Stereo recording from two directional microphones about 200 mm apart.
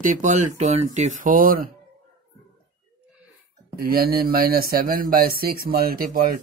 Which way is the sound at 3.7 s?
50° right (ahead or behind).